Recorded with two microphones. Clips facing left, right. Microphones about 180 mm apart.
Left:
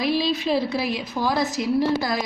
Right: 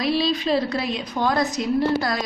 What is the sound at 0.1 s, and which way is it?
A woman's voice, 10° left (ahead or behind).